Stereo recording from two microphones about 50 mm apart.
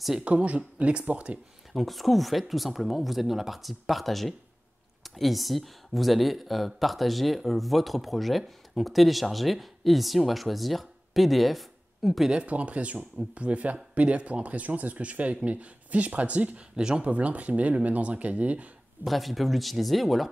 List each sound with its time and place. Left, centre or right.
0.2 s speech: right
1.7 s speech: centre
12.3 s speech: right
19.0 s speech: centre